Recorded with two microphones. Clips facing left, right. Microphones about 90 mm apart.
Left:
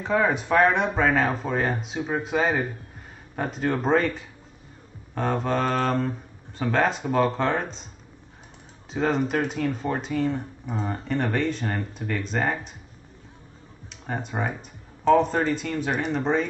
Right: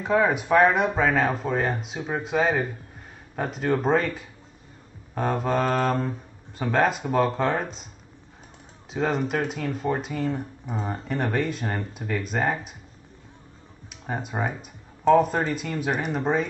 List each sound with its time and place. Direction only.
0.0 s speech: 5° right (ahead or behind)
8.9 s speech: centre (ahead or behind)
14.0 s speech: 5° right (ahead or behind)